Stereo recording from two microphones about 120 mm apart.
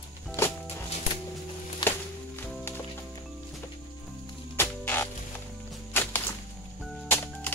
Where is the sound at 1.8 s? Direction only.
40° left (ahead or behind).